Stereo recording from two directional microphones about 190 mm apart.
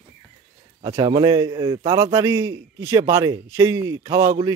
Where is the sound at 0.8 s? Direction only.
20° right (ahead or behind).